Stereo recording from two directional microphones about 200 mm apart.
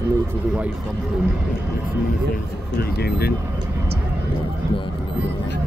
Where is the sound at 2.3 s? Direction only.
50° left (ahead or behind).